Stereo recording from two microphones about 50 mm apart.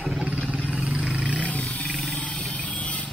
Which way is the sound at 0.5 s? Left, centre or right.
Right.